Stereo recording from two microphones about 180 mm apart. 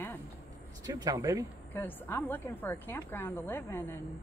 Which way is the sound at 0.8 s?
20° right (ahead or behind).